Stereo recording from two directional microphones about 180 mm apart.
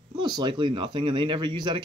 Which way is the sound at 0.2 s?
25° right (ahead or behind).